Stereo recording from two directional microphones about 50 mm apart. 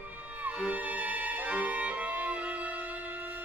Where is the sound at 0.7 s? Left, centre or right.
Right.